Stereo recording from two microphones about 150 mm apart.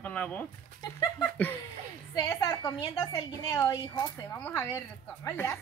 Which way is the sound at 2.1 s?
25° left (ahead or behind).